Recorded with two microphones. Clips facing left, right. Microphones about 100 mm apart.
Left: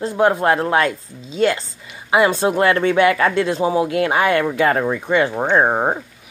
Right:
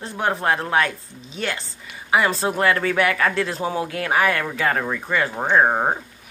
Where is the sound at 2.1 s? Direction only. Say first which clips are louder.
Left 4 dB; 25° left (ahead or behind).